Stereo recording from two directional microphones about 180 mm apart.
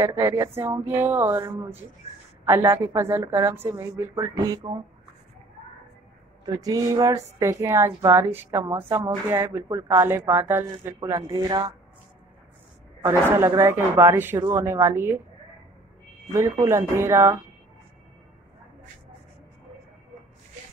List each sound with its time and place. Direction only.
0.0 s a woman's voice: 15° right (ahead or behind)
6.4 s a woman's voice: 20° right (ahead or behind)
13.0 s a woman's voice: 15° right (ahead or behind)
16.3 s a woman's voice: 15° right (ahead or behind)